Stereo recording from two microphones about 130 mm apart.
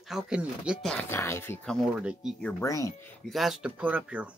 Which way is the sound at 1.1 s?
20° left (ahead or behind).